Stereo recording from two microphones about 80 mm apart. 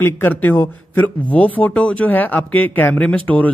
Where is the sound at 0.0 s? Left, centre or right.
Left.